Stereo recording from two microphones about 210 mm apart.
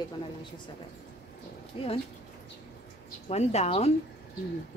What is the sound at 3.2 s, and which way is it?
Speech, 30° left (ahead or behind).